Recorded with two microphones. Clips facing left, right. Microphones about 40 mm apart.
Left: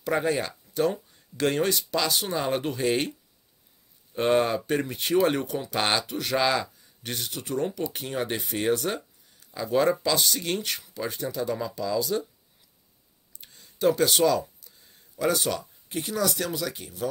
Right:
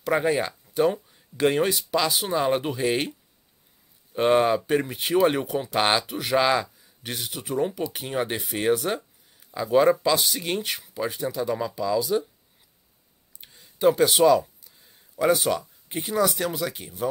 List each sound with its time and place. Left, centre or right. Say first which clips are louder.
0.0 s speech: right 3 dB; centre
13.4 s a sound: right 3 dB; centre
15.1 s speech: right 4 dB; centre